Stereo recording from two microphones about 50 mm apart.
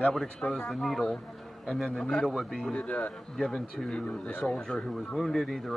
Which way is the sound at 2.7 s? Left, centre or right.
Left.